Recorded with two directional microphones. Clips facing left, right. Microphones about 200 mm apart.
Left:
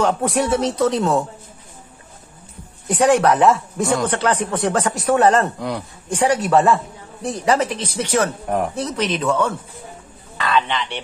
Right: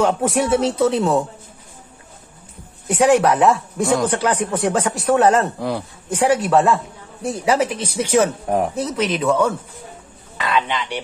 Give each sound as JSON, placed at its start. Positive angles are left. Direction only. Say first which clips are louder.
{"t": 0.0, "sound": "a man's voice", "louder": "right 1 dB", "side_deg": 0}
{"t": 2.9, "sound": "speech", "louder": "right 1 dB", "side_deg": -5}
{"t": 4.9, "sound": "a man's voice", "louder": "even", "side_deg": 0}